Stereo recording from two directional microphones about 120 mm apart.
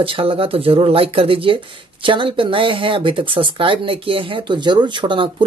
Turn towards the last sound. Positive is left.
turn(degrees=-45)  # may be behind; listen again after turning